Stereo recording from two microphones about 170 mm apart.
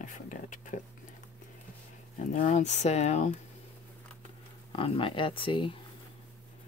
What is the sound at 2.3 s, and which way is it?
Speech, 45° left (ahead or behind).